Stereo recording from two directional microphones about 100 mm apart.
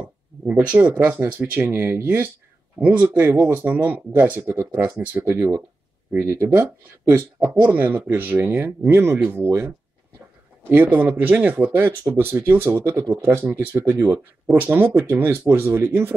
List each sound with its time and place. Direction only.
0.5 s speech: 15° right (ahead or behind)
10.7 s speech: 20° right (ahead or behind)